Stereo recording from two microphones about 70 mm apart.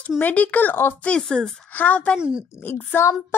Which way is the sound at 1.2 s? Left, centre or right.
Centre.